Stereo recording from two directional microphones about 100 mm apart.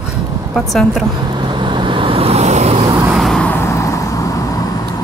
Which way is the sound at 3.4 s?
20° left (ahead or behind).